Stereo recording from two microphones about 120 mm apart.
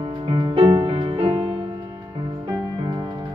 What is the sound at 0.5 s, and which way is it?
Music, 50° right (ahead or behind).